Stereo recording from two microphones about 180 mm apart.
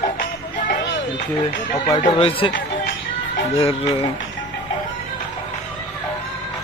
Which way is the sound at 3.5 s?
30° left (ahead or behind).